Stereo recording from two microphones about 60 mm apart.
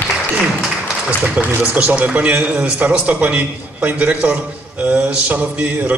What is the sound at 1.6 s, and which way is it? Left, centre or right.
A man's voice, right.